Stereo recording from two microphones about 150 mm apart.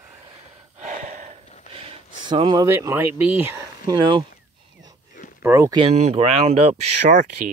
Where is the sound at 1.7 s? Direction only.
40° right (ahead or behind).